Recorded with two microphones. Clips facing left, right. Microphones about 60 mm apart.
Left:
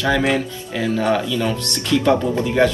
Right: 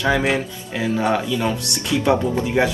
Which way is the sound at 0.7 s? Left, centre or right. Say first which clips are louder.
Left 1 dB; centre.